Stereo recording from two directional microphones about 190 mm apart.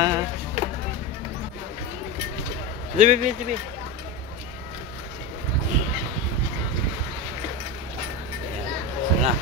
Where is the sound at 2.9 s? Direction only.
40° right (ahead or behind).